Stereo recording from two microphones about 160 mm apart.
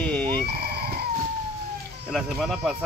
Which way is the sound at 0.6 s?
90° right.